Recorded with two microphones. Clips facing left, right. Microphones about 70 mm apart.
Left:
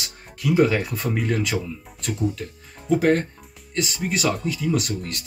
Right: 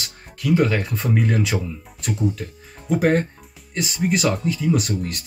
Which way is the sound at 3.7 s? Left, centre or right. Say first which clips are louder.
Right 3 dB; centre.